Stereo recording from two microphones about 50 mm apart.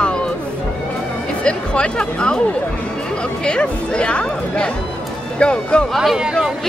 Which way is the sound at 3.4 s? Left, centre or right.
Centre.